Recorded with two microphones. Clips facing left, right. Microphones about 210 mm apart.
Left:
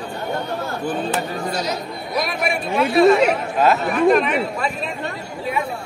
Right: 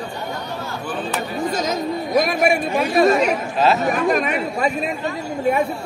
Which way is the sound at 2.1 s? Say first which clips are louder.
Right 5 dB; 45° right (ahead or behind).